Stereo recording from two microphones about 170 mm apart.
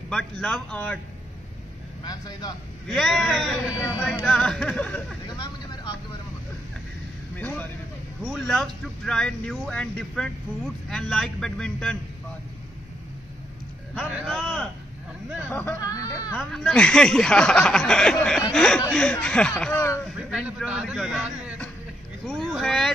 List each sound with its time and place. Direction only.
0.1 s speech: 5° left (ahead or behind)
2.0 s speech: 20° left (ahead or behind)
2.9 s speech: centre (ahead or behind)
7.3 s speech: 10° left (ahead or behind)
14.1 s speech: centre (ahead or behind)
15.5 s speech: 10° left (ahead or behind)
16.5 s speech: 5° left (ahead or behind)
19.7 s speech: 20° left (ahead or behind)
20.2 s a man's voice: 5° right (ahead or behind)